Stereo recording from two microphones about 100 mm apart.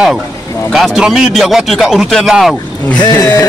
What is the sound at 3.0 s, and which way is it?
Speech, 40° left (ahead or behind).